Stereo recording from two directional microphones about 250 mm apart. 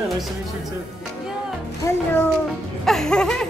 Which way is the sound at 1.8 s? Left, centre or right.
Centre.